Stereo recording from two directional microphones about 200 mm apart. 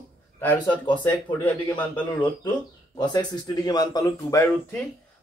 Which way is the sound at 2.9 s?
20° left (ahead or behind).